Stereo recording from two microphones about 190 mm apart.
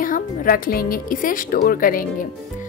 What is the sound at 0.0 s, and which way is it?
A woman's voice, 45° left (ahead or behind).